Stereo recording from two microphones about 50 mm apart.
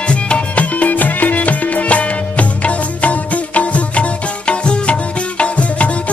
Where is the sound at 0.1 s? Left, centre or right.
Left.